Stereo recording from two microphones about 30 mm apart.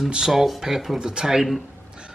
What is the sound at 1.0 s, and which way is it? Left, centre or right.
Speech, right.